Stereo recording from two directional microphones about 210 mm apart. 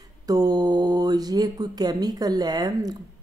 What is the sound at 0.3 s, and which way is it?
Speech, 15° right (ahead or behind).